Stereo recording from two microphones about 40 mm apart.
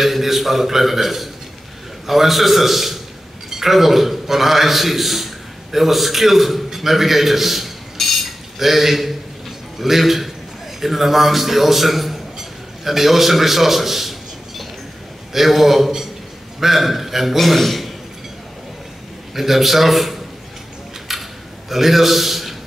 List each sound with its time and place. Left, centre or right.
0.0 s a man's voice: centre
15.3 s a man's voice: centre
19.3 s a man's voice: centre
21.1 s a sound: centre
21.6 s a man's voice: centre